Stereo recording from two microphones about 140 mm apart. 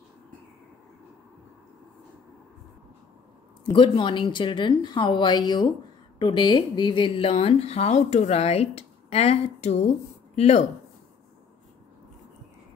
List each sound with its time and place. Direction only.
3.7 s a woman's voice: 35° left (ahead or behind); by 10.7 s 50° left (ahead or behind)